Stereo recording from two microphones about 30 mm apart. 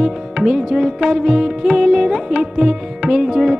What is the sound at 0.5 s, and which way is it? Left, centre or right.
Music, right.